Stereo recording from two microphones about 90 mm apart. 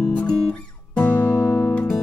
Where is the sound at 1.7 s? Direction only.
10° left (ahead or behind).